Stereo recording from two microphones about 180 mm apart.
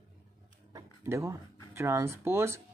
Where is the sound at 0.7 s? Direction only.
15° right (ahead or behind).